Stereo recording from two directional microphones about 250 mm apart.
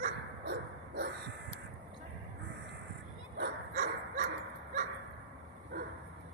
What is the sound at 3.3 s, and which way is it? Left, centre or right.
Dog, right.